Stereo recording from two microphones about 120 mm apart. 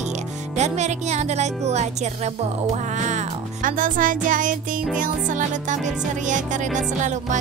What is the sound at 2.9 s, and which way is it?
Music, 80° right.